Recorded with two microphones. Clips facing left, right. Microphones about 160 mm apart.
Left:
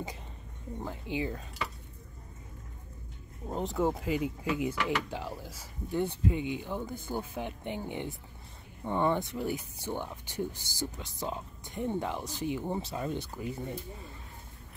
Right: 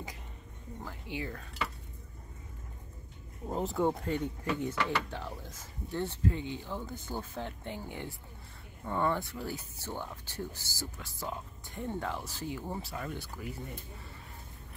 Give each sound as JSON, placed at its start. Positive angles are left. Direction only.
{"t": 0.8, "sound": "speech", "side_deg": 20}
{"t": 3.4, "sound": "speech", "side_deg": 0}